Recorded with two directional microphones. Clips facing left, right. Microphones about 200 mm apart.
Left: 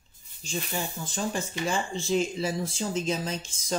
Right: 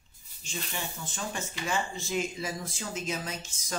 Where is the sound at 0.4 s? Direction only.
35° left (ahead or behind).